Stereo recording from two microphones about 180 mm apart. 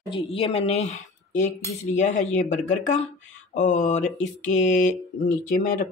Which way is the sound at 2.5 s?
45° left (ahead or behind).